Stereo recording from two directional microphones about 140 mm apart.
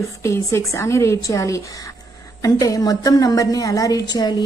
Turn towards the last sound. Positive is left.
turn(degrees=30)  # may be behind; listen again after turning